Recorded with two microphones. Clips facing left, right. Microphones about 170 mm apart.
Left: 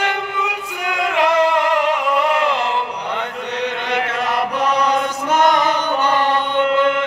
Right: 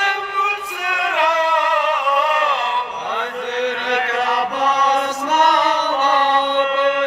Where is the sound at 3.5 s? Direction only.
10° left (ahead or behind).